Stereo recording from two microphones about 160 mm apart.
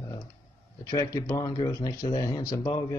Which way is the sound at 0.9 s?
20° left (ahead or behind).